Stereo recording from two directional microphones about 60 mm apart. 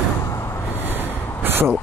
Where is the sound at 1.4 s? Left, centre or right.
Right.